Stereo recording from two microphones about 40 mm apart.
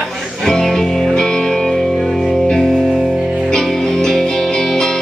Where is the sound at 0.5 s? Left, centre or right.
Centre.